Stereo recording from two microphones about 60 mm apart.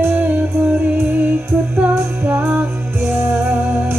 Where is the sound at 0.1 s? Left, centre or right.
Right.